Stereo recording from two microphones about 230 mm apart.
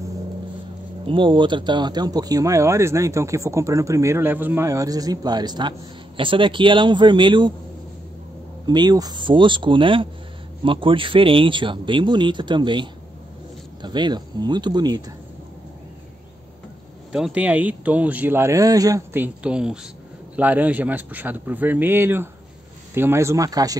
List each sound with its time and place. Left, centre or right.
1.0 s speech: right
8.6 s speech: centre
17.1 s speech: centre